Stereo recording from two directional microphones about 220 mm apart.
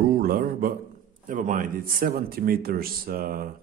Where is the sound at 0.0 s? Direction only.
40° right (ahead or behind).